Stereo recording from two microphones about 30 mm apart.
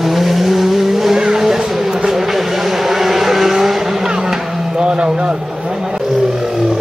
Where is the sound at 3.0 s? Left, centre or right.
Centre.